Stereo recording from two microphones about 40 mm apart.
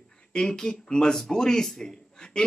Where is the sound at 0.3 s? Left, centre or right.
Centre.